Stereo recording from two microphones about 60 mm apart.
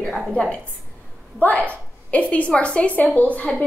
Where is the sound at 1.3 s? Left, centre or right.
Left.